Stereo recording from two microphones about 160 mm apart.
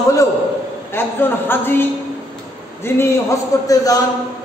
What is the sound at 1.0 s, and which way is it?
A man's voice, 15° left (ahead or behind).